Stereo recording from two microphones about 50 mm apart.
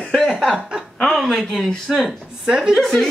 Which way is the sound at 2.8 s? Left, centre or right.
Centre.